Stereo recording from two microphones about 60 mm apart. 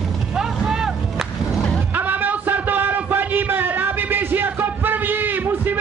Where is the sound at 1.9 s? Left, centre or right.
Right.